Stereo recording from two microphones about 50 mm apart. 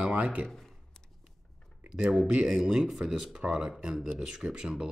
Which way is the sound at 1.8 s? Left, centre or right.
Right.